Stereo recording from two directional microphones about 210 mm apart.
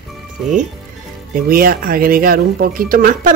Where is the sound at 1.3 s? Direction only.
45° right (ahead or behind).